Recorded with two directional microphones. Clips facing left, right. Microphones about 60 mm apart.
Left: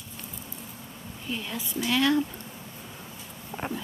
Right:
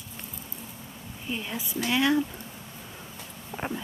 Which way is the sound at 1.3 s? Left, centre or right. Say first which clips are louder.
Even; centre.